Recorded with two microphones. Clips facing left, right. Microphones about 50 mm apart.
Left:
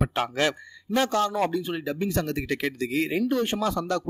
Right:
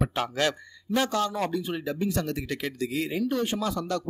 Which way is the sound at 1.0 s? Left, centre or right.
Left.